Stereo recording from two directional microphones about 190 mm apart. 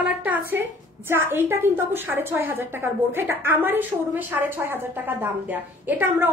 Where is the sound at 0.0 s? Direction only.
10° right (ahead or behind).